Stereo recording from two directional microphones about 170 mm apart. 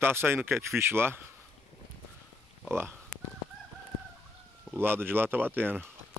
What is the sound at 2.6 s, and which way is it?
Speech, 15° right (ahead or behind).